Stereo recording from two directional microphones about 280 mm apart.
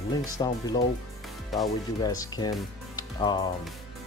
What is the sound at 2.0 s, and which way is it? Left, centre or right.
Speech, centre.